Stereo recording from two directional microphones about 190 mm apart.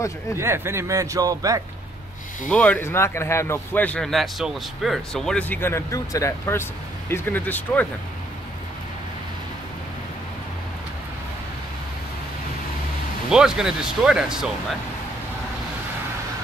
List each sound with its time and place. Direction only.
0.4 s a man's voice: 15° right (ahead or behind)
2.5 s a man's voice: 10° left (ahead or behind)
13.3 s speech: 5° right (ahead or behind)